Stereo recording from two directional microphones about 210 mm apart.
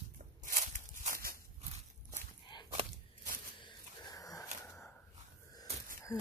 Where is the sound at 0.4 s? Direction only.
40° right (ahead or behind).